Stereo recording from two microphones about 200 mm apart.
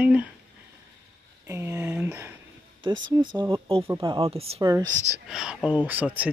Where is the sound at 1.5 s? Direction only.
10° right (ahead or behind).